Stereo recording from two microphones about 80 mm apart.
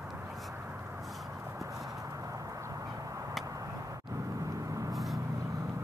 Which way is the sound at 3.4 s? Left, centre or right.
Right.